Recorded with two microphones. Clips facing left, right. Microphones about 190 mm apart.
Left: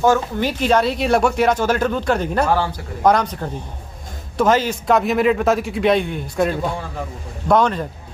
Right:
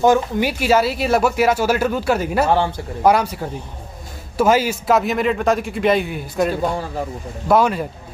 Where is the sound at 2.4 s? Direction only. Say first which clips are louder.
Right 2 dB; 25° right (ahead or behind).